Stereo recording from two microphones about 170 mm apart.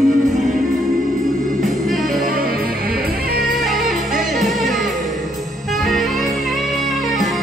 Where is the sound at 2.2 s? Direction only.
60° right (ahead or behind).